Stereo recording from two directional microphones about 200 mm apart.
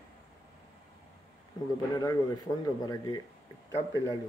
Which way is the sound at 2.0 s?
20° left (ahead or behind).